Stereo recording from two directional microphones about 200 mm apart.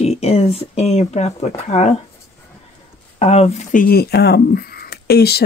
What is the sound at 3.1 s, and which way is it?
Speech, 30° left (ahead or behind).